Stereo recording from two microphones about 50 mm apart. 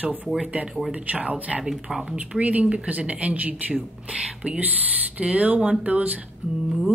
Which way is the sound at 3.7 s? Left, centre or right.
Centre.